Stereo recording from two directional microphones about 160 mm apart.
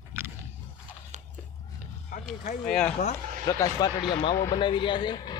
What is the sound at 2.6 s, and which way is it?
Speech, 5° left (ahead or behind).